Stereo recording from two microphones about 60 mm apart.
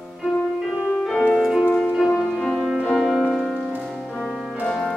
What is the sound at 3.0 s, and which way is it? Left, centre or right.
Music, centre.